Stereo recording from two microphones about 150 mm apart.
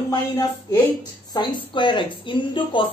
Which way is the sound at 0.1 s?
25° left (ahead or behind).